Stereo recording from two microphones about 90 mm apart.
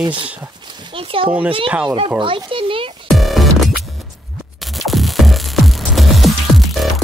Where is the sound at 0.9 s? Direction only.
80° right.